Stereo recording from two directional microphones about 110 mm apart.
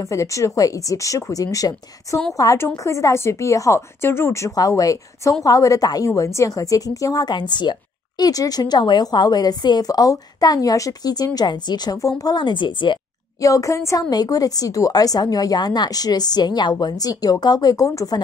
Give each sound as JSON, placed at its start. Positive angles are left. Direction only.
{"t": 0.1, "sound": "a woman's voice", "side_deg": 30}
{"t": 13.4, "sound": "a woman's voice", "side_deg": 30}